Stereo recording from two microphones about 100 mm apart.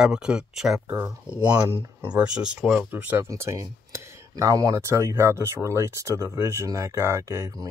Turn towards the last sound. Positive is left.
turn(degrees=-30)  # may be behind; listen again after turning